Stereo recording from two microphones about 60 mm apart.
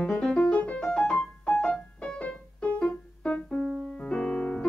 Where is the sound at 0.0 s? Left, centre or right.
Centre.